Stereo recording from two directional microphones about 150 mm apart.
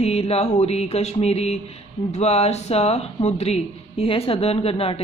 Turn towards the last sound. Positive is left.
turn(degrees=40)  # may be behind; listen again after turning